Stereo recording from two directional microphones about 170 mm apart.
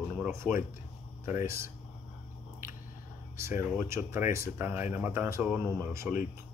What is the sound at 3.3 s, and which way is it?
Speech, 15° right (ahead or behind).